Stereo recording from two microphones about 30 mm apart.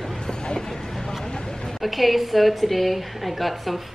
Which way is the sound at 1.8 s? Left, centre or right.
Centre.